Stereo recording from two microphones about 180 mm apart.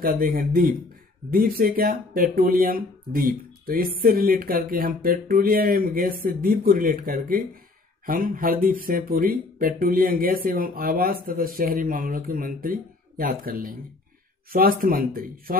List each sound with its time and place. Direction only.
0.0 s speech: 55° right (ahead or behind)